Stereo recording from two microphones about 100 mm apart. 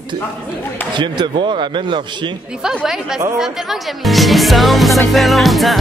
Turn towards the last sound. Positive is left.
turn(degrees=0)  # may be behind; listen again after turning